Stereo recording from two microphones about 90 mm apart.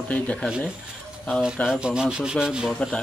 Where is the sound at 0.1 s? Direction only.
10° left (ahead or behind).